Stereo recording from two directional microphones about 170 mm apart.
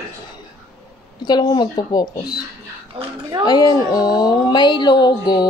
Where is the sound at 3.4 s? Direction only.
25° left (ahead or behind).